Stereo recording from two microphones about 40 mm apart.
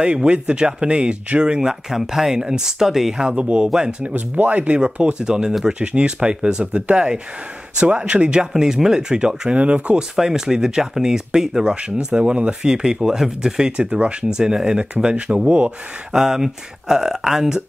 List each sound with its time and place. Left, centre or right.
0.0 s speech: right
1.7 s speech: centre
3.3 s speech: right
4.1 s speech: right
4.7 s speech: right
9.6 s speech: right
10.1 s speech: centre
11.7 s speech: right
12.6 s speech: centre
13.7 s speech: right
16.1 s speech: centre